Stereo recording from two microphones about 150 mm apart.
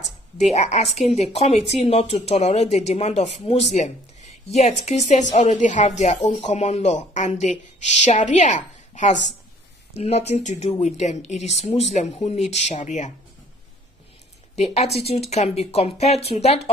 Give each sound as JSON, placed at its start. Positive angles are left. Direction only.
{"t": 0.4, "sound": "a woman's voice", "side_deg": 45}
{"t": 14.5, "sound": "a woman's voice", "side_deg": 45}